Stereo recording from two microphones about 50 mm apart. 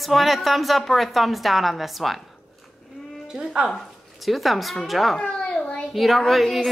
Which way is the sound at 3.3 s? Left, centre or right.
Centre.